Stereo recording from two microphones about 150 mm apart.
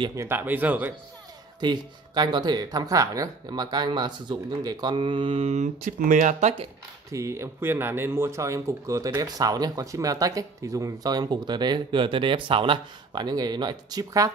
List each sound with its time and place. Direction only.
0.0 s speech: 20° right (ahead or behind)
1.6 s speech: 30° right (ahead or behind); by 6.5 s 55° right (ahead or behind)
7.1 s speech: 20° right (ahead or behind)